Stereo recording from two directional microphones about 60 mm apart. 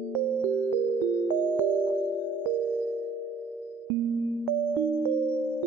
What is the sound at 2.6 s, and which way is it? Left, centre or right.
Music, centre.